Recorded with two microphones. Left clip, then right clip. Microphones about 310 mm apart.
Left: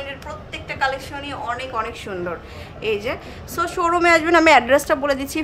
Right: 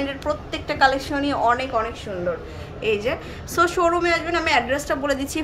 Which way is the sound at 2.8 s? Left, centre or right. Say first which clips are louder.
Right 1 dB; centre.